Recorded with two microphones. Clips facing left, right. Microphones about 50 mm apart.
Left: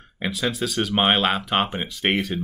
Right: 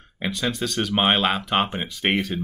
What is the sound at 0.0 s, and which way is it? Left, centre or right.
Speech, centre.